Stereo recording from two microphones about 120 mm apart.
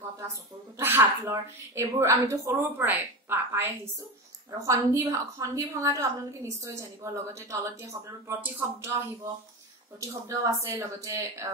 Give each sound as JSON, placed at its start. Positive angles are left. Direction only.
{"t": 0.3, "sound": "a woman's voice", "side_deg": -20}